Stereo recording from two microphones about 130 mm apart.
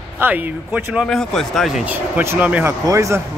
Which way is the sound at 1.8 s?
15° right (ahead or behind).